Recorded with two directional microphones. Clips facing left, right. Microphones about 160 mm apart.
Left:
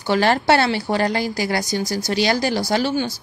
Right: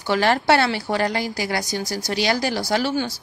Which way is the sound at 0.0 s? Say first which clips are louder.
Left 2 dB; 30° left (ahead or behind).